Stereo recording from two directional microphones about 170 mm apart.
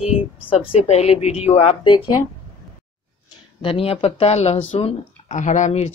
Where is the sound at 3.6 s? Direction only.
35° left (ahead or behind).